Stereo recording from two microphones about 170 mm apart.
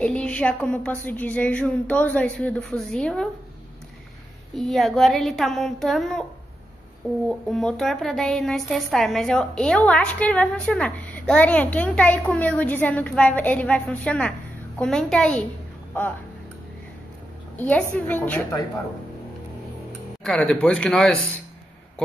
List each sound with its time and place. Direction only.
0.0 s a woman's voice: 5° left (ahead or behind)
4.6 s a woman's voice: centre (ahead or behind)
7.2 s a woman's voice: 5° left (ahead or behind)
17.6 s a woman's voice: 10° left (ahead or behind)
20.2 s a woman's voice: 5° left (ahead or behind)